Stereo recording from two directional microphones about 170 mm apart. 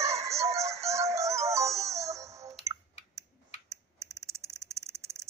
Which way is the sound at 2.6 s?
20° right (ahead or behind).